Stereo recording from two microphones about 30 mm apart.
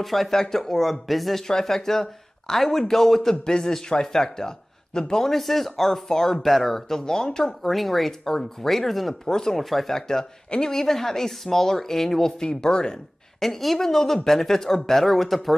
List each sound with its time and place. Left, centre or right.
0.0 s speech: centre
0.3 s speech: centre
1.5 s a man's voice: centre
5.2 s speech: centre
6.4 s speech: centre
7.6 s speech: centre
9.2 s speech: centre
9.6 s speech: centre
9.9 s speech: centre
12.4 s speech: left
13.4 s speech: centre